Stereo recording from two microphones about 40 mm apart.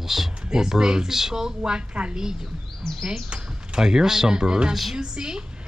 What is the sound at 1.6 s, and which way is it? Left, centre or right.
Speech, right.